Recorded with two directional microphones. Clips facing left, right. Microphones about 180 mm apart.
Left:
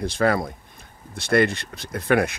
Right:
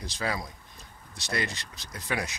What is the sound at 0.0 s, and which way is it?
Speech, 55° left (ahead or behind).